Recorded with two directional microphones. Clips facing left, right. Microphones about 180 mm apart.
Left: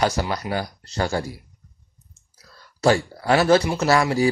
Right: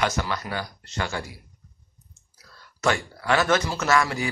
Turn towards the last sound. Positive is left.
turn(degrees=35)  # may be behind; listen again after turning